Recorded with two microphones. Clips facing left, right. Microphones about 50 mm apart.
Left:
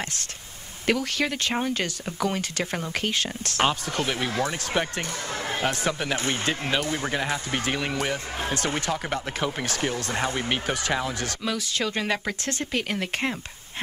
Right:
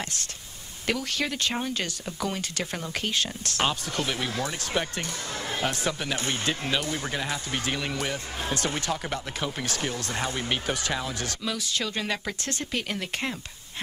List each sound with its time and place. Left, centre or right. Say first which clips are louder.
0.8 s speech: left 4 dB; left